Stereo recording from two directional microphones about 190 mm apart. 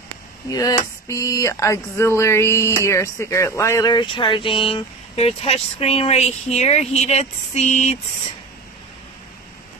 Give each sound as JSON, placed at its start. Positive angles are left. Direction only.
{"t": 0.5, "sound": "speech", "side_deg": 20}